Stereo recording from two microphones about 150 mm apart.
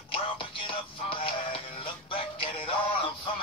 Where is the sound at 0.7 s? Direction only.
35° left (ahead or behind).